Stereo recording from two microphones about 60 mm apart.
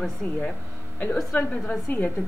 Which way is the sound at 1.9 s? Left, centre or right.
Left.